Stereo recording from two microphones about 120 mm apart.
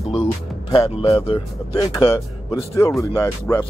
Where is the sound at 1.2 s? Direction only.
50° left (ahead or behind).